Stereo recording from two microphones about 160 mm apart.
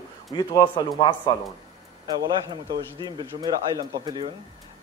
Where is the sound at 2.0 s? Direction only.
25° right (ahead or behind).